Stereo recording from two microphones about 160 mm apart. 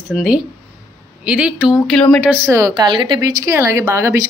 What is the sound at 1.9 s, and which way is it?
Speech, 5° left (ahead or behind).